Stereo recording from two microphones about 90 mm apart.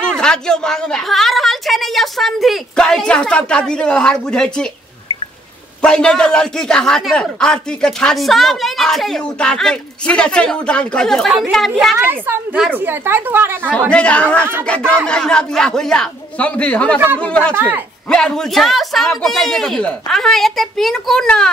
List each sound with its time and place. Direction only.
0.0 s a man's voice: 10° left (ahead or behind)
5.8 s a man's voice: 10° left (ahead or behind)
12.0 s a woman's voice: 25° right (ahead or behind)
13.7 s a man's voice: 15° left (ahead or behind)
17.6 s a woman's voice: 20° right (ahead or behind)
18.1 s speech: 5° left (ahead or behind)